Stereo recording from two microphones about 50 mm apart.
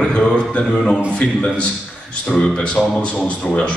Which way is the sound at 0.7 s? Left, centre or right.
Centre.